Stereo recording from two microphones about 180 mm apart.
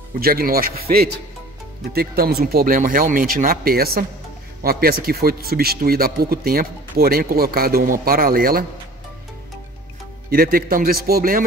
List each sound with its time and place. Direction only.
0.2 s speech: 55° right (ahead or behind)
10.3 s speech: 55° right (ahead or behind)